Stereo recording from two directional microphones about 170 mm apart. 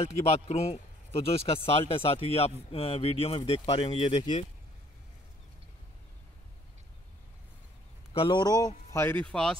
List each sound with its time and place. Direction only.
0.0 s speech: 35° left (ahead or behind)
8.1 s speech: 30° left (ahead or behind); by 9.6 s 5° left (ahead or behind)